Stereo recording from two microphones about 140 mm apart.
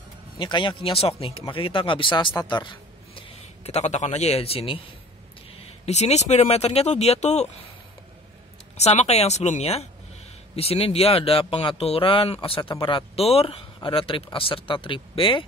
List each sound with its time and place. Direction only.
0.4 s a man's voice: 35° left (ahead or behind)
3.6 s speech: 55° left (ahead or behind)
5.6 s speech: 50° left (ahead or behind)
8.7 s speech: 50° left (ahead or behind)